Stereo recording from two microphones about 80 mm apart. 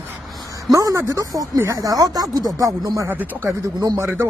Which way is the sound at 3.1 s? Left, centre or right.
Right.